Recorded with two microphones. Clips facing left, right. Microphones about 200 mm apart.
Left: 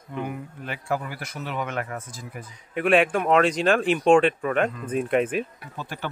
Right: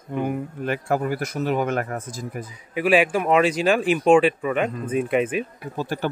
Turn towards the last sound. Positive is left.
turn(degrees=-40)  # may be behind; listen again after turning